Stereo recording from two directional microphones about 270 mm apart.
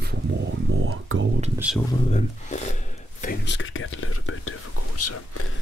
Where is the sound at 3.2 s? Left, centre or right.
Left.